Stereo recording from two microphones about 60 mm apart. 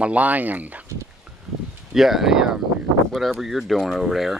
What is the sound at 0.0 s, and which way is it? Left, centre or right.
Speech, right.